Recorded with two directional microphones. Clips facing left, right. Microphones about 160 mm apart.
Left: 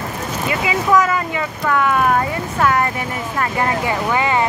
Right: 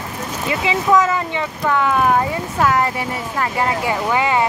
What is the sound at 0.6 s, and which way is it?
Speech, 20° right (ahead or behind).